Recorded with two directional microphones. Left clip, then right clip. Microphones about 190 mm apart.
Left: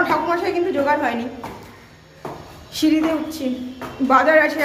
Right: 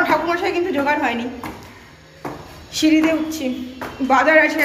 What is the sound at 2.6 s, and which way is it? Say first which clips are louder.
A woman's voice: right 2 dB; 15° left (ahead or behind).